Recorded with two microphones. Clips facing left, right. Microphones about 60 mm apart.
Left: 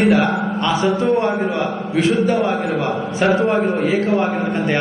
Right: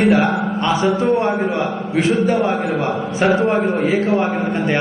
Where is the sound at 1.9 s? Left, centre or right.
Right.